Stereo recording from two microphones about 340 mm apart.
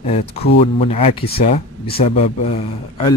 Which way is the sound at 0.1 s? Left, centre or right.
Left.